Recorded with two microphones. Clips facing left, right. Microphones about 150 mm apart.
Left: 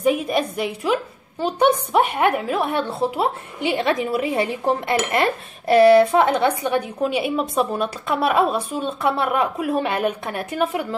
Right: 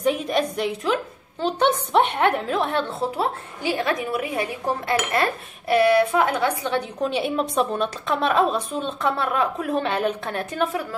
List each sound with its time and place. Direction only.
0.0 s a woman's voice: 5° left (ahead or behind); by 6.3 s 30° left (ahead or behind)
6.3 s a woman's voice: 15° left (ahead or behind)
10.7 s a woman's voice: 20° left (ahead or behind)